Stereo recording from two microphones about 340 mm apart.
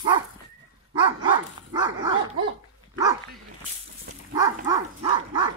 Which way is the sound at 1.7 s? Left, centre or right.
Centre.